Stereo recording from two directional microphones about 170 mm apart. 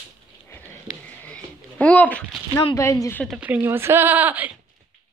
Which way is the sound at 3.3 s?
10° right (ahead or behind).